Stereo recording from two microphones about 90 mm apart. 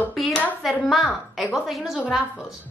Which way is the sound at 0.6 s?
Centre (ahead or behind).